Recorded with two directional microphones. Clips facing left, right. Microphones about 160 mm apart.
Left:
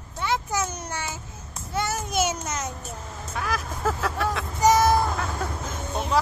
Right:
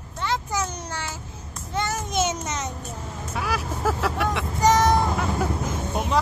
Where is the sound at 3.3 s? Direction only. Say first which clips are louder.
Right 2 dB; 10° right (ahead or behind).